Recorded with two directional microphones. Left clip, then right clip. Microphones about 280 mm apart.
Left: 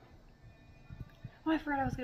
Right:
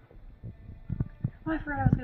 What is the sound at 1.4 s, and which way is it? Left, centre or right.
Speech, centre.